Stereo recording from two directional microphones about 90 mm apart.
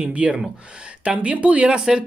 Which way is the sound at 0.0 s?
15° right (ahead or behind).